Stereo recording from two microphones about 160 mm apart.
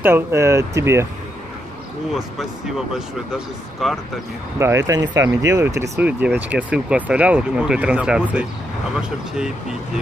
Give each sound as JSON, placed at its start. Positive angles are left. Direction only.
{"t": 0.0, "sound": "speech", "side_deg": -15}
{"t": 2.1, "sound": "speech", "side_deg": 0}
{"t": 4.6, "sound": "speech", "side_deg": -20}